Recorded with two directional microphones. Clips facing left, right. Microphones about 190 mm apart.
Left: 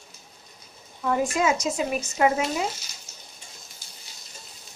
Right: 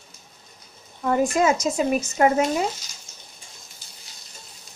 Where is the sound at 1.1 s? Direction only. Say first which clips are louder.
Right 3 dB; 40° right (ahead or behind).